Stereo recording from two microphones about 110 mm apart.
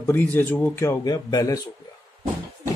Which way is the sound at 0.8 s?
30° left (ahead or behind).